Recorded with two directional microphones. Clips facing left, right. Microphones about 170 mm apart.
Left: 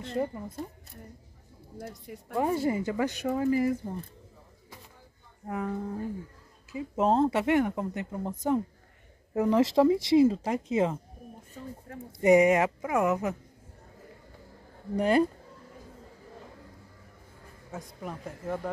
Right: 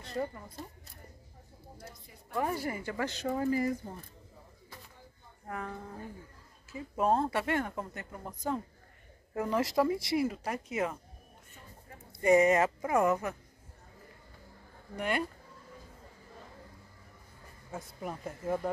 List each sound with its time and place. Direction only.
0.0 s speech: 20° left (ahead or behind)
1.8 s a woman's voice: 60° left (ahead or behind)
2.3 s speech: 25° left (ahead or behind)
3.3 s speech: 5° left (ahead or behind)
5.5 s speech: 15° left (ahead or behind)
12.2 s speech: 15° left (ahead or behind)
15.0 s speech: 35° left (ahead or behind)
17.7 s speech: centre (ahead or behind)